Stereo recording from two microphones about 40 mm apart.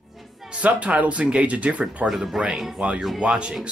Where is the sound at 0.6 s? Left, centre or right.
Right.